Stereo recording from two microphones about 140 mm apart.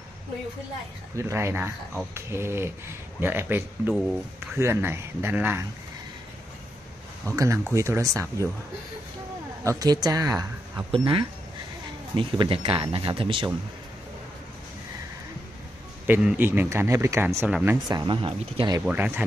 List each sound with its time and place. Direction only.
1.1 s speech: 20° right (ahead or behind)
7.3 s speech: 20° right (ahead or behind)
9.7 s speech: 25° right (ahead or behind)
10.9 s speech: 40° right (ahead or behind)
16.1 s speech: 10° right (ahead or behind)
17.5 s speech: 5° right (ahead or behind)
17.8 s speech: 30° right (ahead or behind)
18.9 s speech: 10° right (ahead or behind)